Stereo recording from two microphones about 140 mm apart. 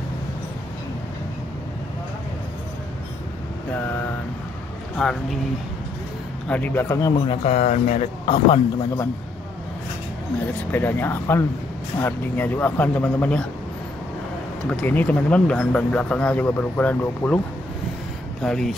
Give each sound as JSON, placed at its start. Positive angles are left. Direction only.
{"t": 5.0, "sound": "speech", "side_deg": 5}
{"t": 6.5, "sound": "speech", "side_deg": 15}
{"t": 7.2, "sound": "speech", "side_deg": 55}
{"t": 10.7, "sound": "speech", "side_deg": 15}
{"t": 14.7, "sound": "speech", "side_deg": 10}
{"t": 18.4, "sound": "speech", "side_deg": 5}